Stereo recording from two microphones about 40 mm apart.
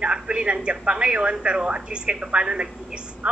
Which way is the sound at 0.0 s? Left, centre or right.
Right.